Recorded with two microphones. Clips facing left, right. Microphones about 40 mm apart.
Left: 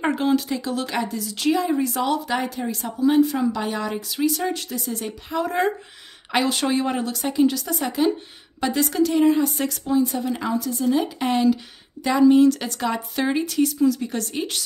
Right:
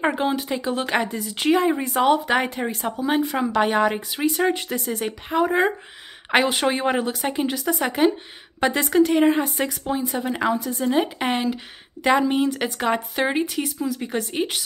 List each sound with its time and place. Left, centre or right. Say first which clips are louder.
0.0 s a woman's voice: left 1 dB; centre; by 5.4 s right
5.4 s speech: right 3 dB; centre
6.3 s a woman's voice: right 2 dB; right
14.3 s speech: right 2 dB; right